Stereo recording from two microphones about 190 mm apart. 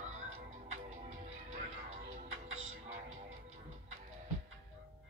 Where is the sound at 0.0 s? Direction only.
35° right (ahead or behind).